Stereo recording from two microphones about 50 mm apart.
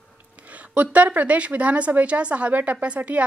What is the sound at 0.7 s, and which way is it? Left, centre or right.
Speech, right.